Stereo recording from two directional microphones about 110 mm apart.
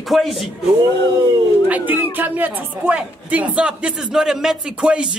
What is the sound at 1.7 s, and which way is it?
Speech, 15° right (ahead or behind).